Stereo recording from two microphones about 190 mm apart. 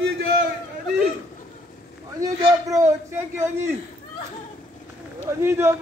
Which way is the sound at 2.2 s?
15° right (ahead or behind).